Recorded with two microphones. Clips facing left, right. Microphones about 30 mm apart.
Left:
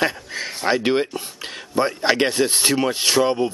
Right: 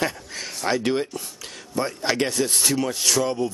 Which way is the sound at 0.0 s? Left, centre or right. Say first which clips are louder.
Left 4 dB; left.